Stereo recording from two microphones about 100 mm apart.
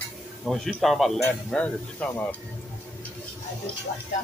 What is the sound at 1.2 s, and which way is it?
Speech, 15° left (ahead or behind).